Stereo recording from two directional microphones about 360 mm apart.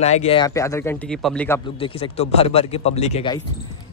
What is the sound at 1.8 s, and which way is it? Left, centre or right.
A man's voice, centre.